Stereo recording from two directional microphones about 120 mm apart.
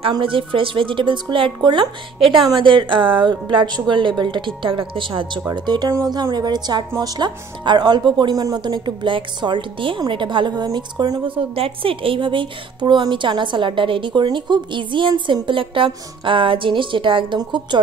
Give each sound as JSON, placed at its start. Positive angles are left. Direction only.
{"t": 0.2, "sound": "speech", "side_deg": -45}
{"t": 2.1, "sound": "speech", "side_deg": 0}
{"t": 2.5, "sound": "speech", "side_deg": -40}
{"t": 5.5, "sound": "speech", "side_deg": -35}